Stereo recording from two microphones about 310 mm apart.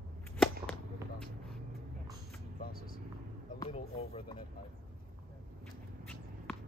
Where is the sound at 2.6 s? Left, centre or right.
Left.